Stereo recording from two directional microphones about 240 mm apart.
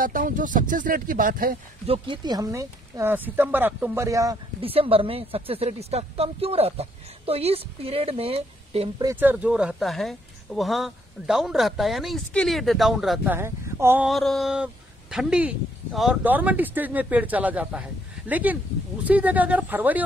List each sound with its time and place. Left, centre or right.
0.0 s speech: right
1.9 s speech: centre